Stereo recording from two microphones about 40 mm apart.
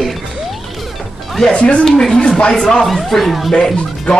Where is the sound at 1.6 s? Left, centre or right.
Left.